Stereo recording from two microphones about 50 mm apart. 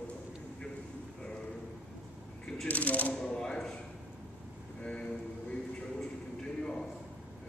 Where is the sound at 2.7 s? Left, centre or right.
Left.